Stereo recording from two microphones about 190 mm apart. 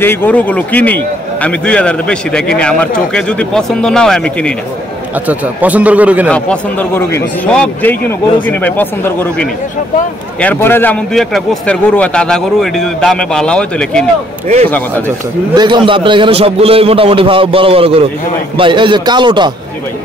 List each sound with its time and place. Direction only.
0.0 s a man's voice: 10° left (ahead or behind)
5.2 s a man's voice: 10° right (ahead or behind)
6.3 s a man's voice: 10° left (ahead or behind)
15.5 s a man's voice: 25° right (ahead or behind)